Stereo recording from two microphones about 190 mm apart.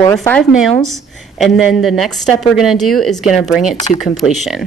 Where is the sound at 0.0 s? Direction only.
15° left (ahead or behind).